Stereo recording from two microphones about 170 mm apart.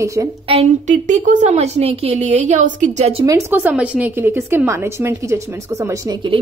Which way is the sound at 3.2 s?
15° right (ahead or behind).